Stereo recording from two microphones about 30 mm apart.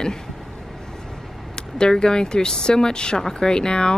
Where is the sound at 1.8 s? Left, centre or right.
Left.